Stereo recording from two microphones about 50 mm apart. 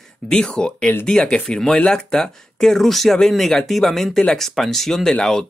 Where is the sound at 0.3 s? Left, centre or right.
Centre.